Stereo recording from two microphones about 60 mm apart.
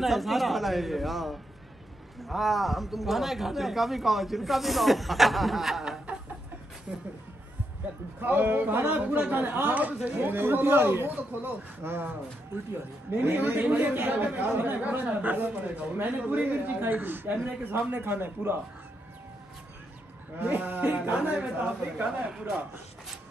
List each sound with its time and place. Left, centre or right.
0.0 s a man's voice: centre
6.9 s speech: centre
8.2 s speech: right
20.3 s speech: right